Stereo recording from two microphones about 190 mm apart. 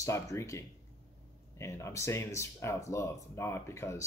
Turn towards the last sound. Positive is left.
turn(degrees=15)  # may be behind; listen again after turning